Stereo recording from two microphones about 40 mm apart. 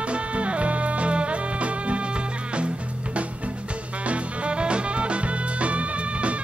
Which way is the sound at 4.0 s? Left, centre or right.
Right.